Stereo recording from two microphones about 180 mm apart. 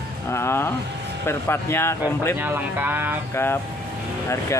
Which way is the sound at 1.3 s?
15° left (ahead or behind).